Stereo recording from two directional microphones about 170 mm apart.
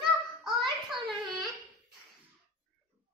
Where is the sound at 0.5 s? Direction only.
25° right (ahead or behind).